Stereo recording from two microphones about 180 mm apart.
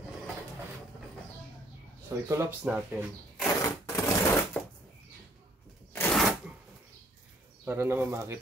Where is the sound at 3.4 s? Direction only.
15° left (ahead or behind).